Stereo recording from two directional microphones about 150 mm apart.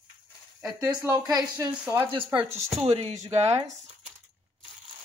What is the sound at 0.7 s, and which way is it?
Speech, 20° right (ahead or behind).